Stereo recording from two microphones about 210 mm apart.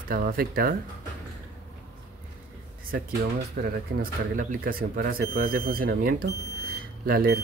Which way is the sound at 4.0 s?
45° right (ahead or behind).